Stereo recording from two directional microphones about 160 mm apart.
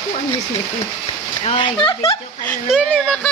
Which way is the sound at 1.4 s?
35° left (ahead or behind).